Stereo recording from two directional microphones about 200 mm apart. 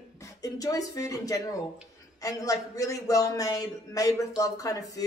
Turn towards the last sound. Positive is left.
turn(degrees=15)  # may be behind; listen again after turning